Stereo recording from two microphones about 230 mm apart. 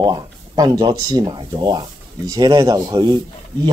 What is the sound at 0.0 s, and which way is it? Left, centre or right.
Speech, centre.